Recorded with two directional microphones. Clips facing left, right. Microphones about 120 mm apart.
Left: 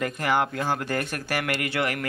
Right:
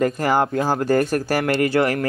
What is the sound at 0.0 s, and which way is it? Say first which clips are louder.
Speech: right 6 dB; 35° right (ahead or behind).